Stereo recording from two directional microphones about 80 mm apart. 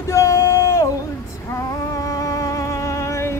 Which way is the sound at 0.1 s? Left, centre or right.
Left.